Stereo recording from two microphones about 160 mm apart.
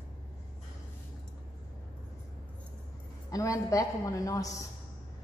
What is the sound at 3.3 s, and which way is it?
A woman's voice, 20° left (ahead or behind).